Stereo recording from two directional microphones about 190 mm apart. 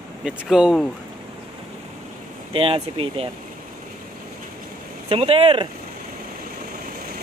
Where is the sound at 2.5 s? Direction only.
30° right (ahead or behind).